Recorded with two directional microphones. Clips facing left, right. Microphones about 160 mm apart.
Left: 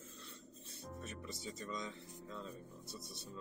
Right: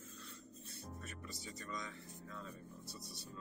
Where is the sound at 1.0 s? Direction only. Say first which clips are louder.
Left 3 dB; 25° left (ahead or behind).